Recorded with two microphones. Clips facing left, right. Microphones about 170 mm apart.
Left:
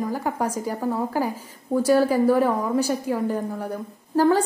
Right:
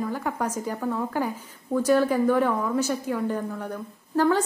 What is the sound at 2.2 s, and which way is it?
Speech, 35° left (ahead or behind).